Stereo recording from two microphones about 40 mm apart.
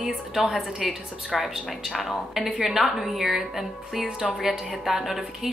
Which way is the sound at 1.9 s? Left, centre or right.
Centre.